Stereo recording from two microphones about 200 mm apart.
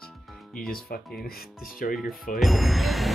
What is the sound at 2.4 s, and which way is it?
Ding, centre (ahead or behind).